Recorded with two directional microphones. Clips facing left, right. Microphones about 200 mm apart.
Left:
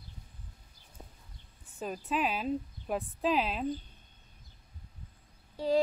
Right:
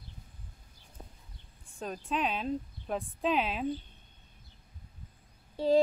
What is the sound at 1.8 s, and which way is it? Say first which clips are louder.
Speech: left 1 dB; 5° left (ahead or behind).